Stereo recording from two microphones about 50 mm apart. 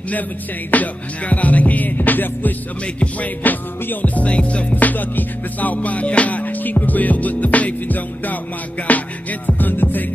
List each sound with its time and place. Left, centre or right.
0.7 s music: left